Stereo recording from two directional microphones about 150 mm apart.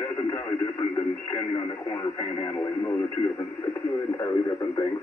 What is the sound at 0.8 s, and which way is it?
Speech, 35° left (ahead or behind).